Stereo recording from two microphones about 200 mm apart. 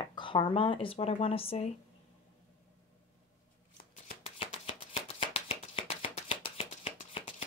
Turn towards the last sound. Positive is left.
turn(degrees=30)  # may be behind; listen again after turning